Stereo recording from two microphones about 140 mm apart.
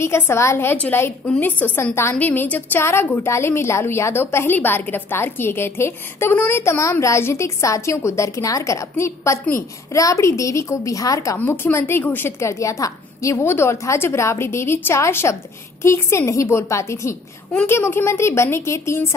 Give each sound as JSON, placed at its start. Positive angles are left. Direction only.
{"t": 0.0, "sound": "a woman's voice", "side_deg": 20}